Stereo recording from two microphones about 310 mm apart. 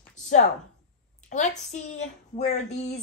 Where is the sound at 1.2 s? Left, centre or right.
Left.